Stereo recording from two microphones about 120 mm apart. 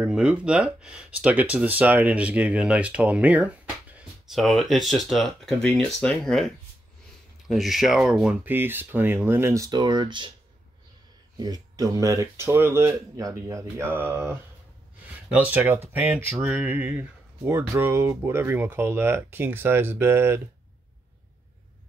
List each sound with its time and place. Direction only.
0.0 s speech: 10° right (ahead or behind)
4.3 s speech: centre (ahead or behind)
8.5 s speech: 15° right (ahead or behind); by 10.3 s 40° right (ahead or behind)
11.3 s speech: 35° right (ahead or behind)